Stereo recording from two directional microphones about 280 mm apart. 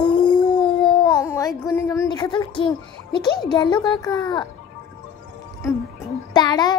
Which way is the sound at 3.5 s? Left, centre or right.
Centre.